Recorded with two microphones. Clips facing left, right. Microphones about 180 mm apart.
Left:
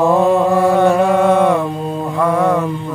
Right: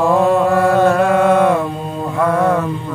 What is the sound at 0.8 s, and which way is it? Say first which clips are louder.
Chant: left 1 dB; 10° left (ahead or behind).